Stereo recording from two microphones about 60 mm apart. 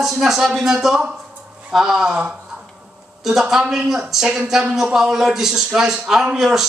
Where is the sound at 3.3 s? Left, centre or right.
Centre.